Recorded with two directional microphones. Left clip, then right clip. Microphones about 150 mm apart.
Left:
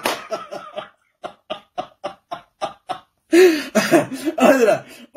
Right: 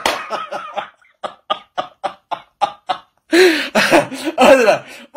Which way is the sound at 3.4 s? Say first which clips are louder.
Right 2 dB; 15° left (ahead or behind).